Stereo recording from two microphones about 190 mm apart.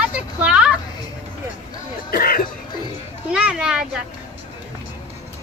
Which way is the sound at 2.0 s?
50° left (ahead or behind).